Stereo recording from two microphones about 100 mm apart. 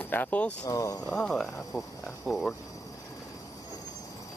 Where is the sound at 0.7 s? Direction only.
35° left (ahead or behind).